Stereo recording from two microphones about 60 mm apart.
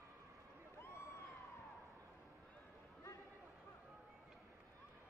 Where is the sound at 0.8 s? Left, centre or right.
Left.